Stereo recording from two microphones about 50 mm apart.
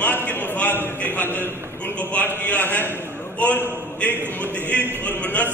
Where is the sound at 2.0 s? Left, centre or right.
Left.